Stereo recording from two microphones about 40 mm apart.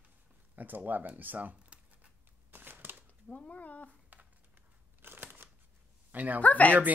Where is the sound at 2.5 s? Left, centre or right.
Right.